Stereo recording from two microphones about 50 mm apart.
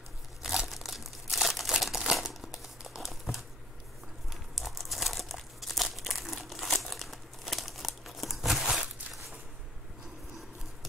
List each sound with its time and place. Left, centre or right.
0.4 s crumpling: centre
3.1 s a sound: centre
4.3 s crumpling: centre